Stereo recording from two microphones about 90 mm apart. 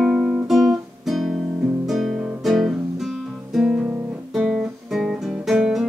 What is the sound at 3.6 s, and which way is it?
Guitar, 10° right (ahead or behind).